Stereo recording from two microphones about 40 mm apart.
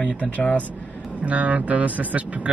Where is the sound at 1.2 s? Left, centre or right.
Right.